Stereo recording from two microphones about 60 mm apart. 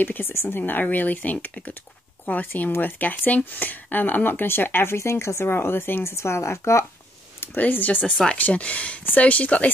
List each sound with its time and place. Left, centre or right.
0.0 s speech: left
0.3 s speech: left
4.9 s speech: left
6.1 s speech: left
7.3 s speech: left